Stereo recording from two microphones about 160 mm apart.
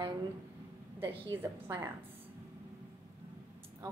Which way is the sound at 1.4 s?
15° right (ahead or behind).